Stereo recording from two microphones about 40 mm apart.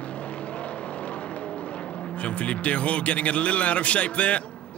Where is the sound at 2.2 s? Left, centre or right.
Left.